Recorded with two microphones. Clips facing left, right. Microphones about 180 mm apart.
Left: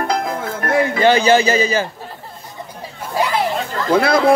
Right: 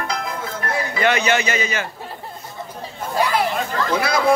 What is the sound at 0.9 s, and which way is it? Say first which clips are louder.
Speech: left 5 dB; 30° left (ahead or behind).